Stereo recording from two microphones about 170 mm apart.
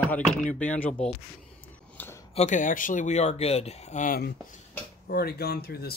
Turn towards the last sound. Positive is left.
turn(degrees=65)  # may be behind; listen again after turning